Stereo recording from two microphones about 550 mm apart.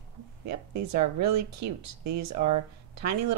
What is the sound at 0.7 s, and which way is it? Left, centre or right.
Speech, right.